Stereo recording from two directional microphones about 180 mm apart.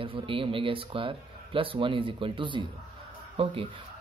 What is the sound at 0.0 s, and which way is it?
Speech, 30° right (ahead or behind).